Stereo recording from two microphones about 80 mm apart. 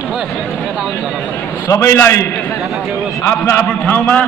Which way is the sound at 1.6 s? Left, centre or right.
Left.